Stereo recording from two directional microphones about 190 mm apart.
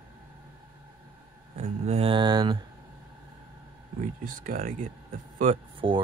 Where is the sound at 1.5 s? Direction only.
35° right (ahead or behind).